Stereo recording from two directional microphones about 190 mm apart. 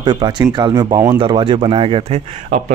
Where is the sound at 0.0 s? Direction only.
25° right (ahead or behind).